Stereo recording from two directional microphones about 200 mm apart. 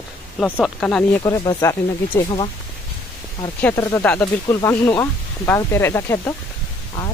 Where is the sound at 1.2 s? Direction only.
15° left (ahead or behind).